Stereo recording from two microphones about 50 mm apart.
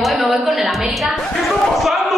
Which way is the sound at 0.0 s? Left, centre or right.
Centre.